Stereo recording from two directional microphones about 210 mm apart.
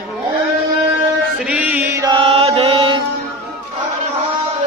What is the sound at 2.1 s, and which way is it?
Mantra, 25° right (ahead or behind).